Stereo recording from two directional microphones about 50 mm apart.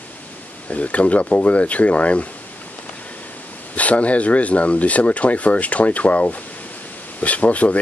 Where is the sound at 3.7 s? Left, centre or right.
Left.